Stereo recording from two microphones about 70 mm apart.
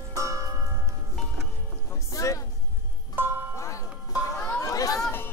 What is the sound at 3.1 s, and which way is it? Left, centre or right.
Music, right.